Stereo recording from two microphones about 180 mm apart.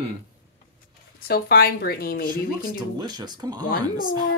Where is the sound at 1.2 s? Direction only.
60° left (ahead or behind).